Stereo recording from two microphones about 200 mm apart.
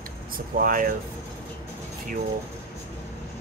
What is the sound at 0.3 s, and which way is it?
Speech, 45° right (ahead or behind).